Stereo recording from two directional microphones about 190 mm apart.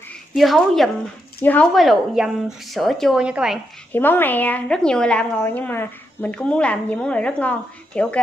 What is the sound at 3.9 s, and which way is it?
A woman's voice, 10° left (ahead or behind).